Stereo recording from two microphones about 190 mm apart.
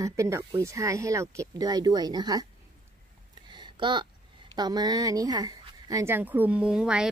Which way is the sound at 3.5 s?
25° right (ahead or behind).